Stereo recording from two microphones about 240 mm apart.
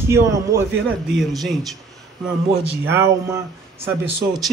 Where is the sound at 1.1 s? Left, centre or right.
Centre.